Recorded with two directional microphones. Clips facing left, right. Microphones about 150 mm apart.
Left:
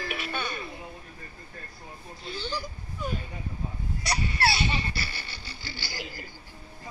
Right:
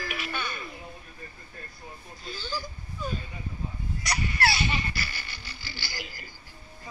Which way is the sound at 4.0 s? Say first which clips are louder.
Left 1 dB; 30° left (ahead or behind).